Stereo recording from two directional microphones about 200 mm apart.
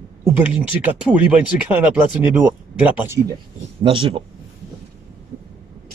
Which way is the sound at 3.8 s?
25° right (ahead or behind).